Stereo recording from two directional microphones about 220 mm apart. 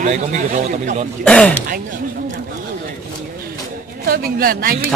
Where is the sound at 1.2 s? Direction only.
5° left (ahead or behind).